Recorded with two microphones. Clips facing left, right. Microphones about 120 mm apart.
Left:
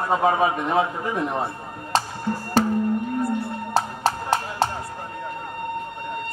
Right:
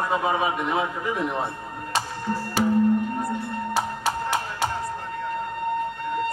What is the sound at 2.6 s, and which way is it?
Music, 10° right (ahead or behind).